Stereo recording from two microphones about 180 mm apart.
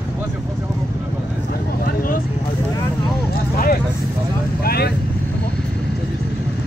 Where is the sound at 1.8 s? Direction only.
50° left (ahead or behind).